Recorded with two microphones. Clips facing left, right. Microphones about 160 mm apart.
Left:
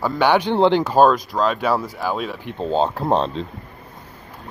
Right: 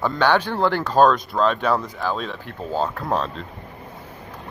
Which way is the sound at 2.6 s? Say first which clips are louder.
Left 5 dB; 25° left (ahead or behind).